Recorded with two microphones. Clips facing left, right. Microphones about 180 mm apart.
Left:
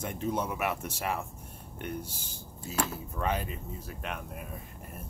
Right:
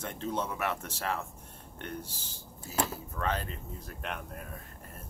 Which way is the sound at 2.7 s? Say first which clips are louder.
Even; 20° left (ahead or behind).